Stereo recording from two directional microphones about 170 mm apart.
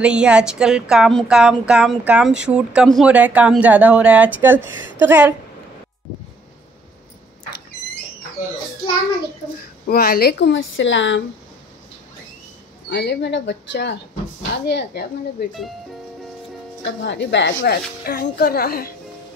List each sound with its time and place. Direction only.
0.0 s a woman's voice: 5° right (ahead or behind)
9.8 s a woman's voice: 70° left (ahead or behind); by 11.2 s 90° left
12.9 s a woman's voice: 90° left
14.7 s speech: 75° left (ahead or behind)
17.0 s a woman's voice: 90° left
17.6 s speech: 65° left (ahead or behind)